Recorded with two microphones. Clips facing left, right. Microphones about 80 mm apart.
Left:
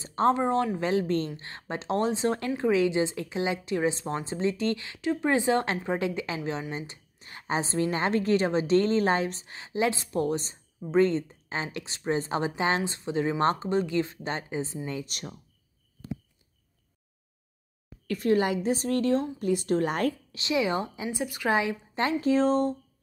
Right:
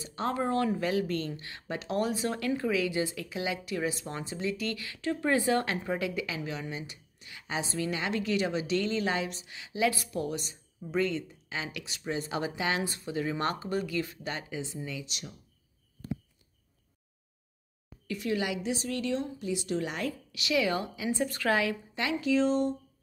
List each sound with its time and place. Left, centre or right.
0.0 s a woman's voice: left
0.4 s a woman's voice: left
14.9 s a woman's voice: left
18.0 s a woman's voice: left
20.3 s a woman's voice: left
21.1 s a woman's voice: centre
21.9 s a woman's voice: left